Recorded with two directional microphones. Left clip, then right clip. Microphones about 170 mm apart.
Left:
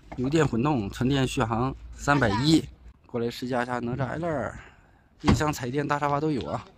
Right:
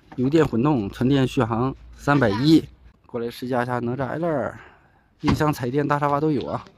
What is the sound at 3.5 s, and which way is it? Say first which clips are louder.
Speech: right 7 dB; 5° left (ahead or behind).